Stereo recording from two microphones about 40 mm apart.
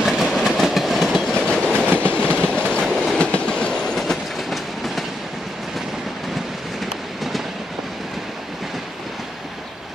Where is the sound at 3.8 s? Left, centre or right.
Centre.